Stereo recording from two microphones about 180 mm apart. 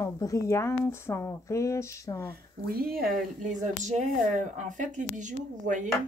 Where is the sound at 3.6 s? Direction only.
40° right (ahead or behind).